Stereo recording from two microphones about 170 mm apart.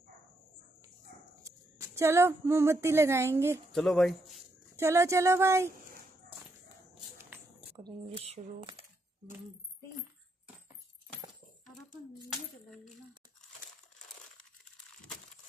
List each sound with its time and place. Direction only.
1.4 s speech: 15° right (ahead or behind)
3.7 s speech: centre (ahead or behind)
4.7 s speech: 15° right (ahead or behind)
7.2 s a sound: 15° right (ahead or behind)
8.2 s speech: 35° right (ahead or behind)
12.3 s a sound: centre (ahead or behind)